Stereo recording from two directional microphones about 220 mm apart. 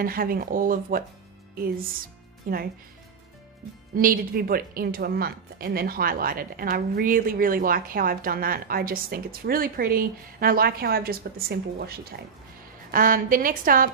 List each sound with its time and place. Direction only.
0.0 s a woman's voice: 40° right (ahead or behind)
3.9 s a woman's voice: 40° right (ahead or behind)